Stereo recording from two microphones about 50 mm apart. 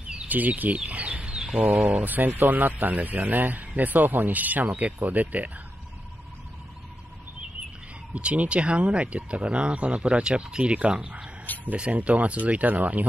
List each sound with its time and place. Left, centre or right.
0.3 s speech: right
0.8 s bird: right
2.0 s speech: right
8.1 s speech: right